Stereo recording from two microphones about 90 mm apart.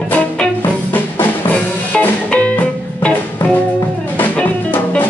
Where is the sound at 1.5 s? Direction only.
15° left (ahead or behind).